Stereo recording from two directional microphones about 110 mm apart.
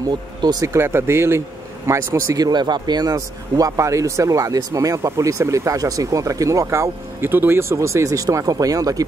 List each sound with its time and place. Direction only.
0.4 s speech: 40° right (ahead or behind)
0.7 s speech: 20° right (ahead or behind)